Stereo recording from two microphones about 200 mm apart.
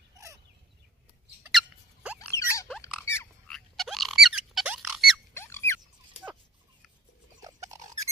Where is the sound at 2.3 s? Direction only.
15° left (ahead or behind).